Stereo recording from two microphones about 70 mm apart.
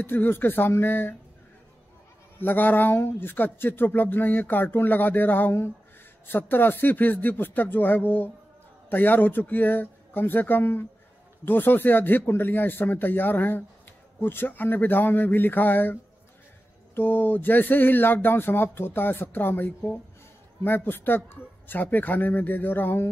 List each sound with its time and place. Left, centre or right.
0.0 s speech: left
2.3 s speech: left